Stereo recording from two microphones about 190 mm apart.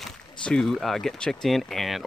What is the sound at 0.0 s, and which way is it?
Speech, centre (ahead or behind).